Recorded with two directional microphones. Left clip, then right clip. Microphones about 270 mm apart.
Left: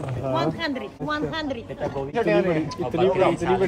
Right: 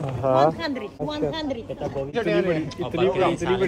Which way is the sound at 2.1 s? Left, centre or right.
Centre.